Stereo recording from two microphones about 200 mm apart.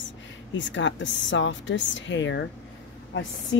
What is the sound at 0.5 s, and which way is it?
A woman's voice, 65° left (ahead or behind).